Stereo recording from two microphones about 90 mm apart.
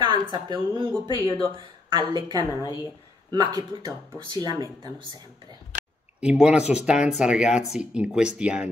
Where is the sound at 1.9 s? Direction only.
50° right (ahead or behind).